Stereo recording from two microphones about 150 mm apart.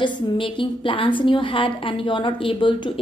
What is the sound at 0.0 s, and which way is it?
A woman's voice, 35° left (ahead or behind).